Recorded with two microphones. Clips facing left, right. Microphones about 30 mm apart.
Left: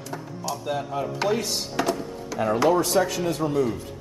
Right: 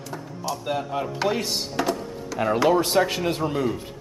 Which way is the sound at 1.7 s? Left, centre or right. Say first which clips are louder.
Left 1 dB; centre.